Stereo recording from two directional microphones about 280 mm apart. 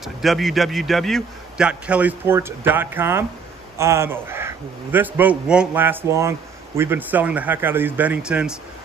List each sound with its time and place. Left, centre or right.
0.0 s a man's voice: centre